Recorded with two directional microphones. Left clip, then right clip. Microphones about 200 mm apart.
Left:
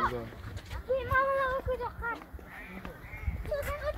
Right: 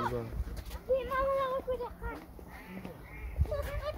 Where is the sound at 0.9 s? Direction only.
5° right (ahead or behind).